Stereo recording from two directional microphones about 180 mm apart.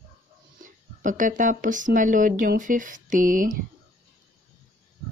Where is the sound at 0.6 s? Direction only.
45° right (ahead or behind).